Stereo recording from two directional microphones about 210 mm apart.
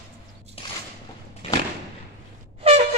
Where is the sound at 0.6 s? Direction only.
25° left (ahead or behind).